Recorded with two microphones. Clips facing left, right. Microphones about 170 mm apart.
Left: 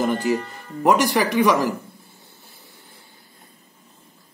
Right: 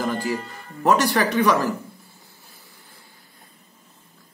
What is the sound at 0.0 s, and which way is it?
A man's voice, 20° left (ahead or behind).